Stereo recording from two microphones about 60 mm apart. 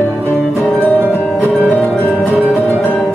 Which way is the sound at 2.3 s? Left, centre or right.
Left.